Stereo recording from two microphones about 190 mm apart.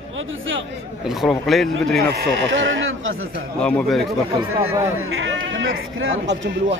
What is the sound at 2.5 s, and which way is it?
Speech, 85° right.